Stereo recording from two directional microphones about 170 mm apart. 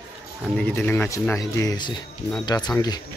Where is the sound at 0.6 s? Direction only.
10° left (ahead or behind).